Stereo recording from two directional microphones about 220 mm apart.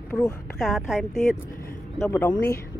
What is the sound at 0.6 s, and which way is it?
Speech, centre (ahead or behind).